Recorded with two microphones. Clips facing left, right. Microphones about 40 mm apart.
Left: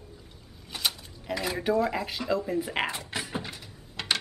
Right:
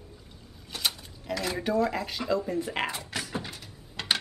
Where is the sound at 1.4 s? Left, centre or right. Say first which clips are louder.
Left 1 dB; centre.